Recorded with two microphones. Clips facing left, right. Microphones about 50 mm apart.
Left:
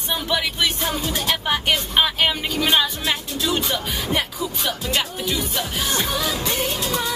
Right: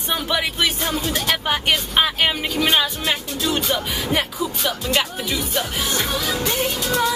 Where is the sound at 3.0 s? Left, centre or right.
Right.